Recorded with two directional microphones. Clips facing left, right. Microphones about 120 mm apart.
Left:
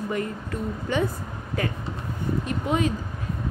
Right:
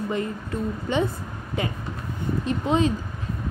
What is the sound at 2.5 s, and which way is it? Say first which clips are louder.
Speech: right 4 dB; 25° right (ahead or behind).